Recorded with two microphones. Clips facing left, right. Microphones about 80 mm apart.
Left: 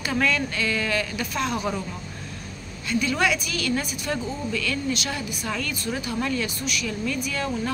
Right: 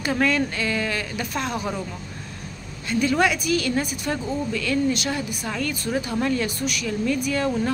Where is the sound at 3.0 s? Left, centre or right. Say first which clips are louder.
Right 4 dB; right.